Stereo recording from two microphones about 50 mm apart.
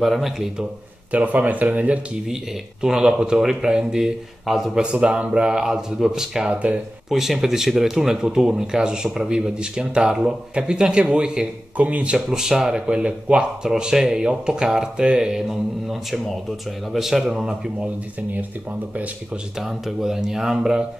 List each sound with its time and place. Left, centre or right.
0.0 s a man's voice: centre
1.1 s speech: right
2.8 s speech: centre
6.5 s speech: right
7.1 s speech: centre; by 12.2 s right
12.3 s speech: centre
15.4 s a man's voice: centre
19.6 s speech: centre